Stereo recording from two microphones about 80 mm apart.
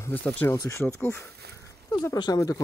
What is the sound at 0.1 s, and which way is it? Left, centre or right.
Speech, centre.